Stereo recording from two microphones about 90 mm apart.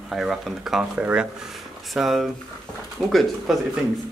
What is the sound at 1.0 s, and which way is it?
Speech, 15° right (ahead or behind).